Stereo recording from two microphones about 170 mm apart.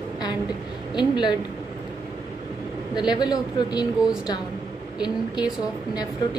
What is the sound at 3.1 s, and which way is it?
Speech, 25° left (ahead or behind).